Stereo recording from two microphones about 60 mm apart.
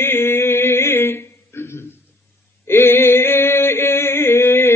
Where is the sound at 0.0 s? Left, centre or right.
Left.